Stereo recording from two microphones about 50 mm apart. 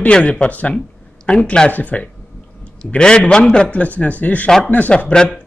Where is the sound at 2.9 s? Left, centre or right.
Centre.